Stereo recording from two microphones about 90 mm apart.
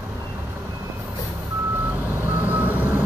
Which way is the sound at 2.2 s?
20° right (ahead or behind).